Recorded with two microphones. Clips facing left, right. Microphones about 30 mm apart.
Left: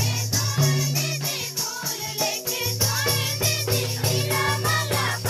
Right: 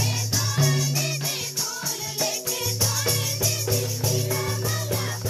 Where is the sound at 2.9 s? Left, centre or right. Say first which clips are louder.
Left 2 dB; left.